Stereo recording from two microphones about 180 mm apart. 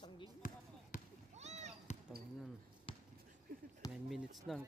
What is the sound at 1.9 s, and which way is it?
Basketball bounce, 40° left (ahead or behind).